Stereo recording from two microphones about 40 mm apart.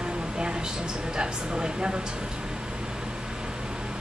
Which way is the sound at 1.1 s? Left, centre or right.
Right.